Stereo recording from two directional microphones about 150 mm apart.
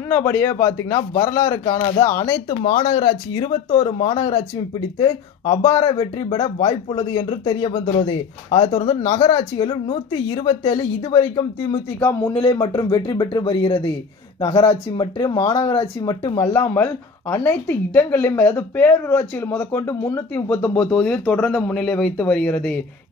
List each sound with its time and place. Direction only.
0.1 s speech: 15° left (ahead or behind)
2.6 s speech: 40° left (ahead or behind)
12.3 s speech: 25° left (ahead or behind); by 22.8 s 10° left (ahead or behind)